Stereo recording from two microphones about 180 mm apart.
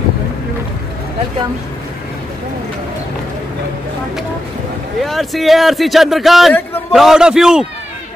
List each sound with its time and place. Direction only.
5.0 s a man's voice: centre (ahead or behind)